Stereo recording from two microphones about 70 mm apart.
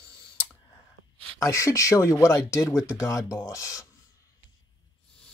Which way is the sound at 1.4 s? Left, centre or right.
Left.